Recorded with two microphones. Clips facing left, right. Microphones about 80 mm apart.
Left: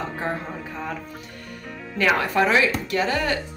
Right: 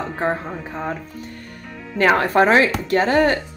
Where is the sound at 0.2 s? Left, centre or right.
Right.